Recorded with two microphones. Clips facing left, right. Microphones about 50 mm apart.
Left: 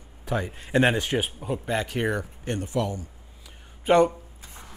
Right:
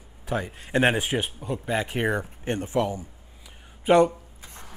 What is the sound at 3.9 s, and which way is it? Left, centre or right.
Speech, centre.